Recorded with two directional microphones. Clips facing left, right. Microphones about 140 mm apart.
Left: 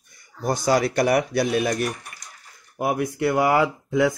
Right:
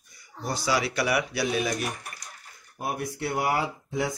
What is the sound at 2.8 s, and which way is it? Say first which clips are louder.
Speech: left 8 dB; 90° left.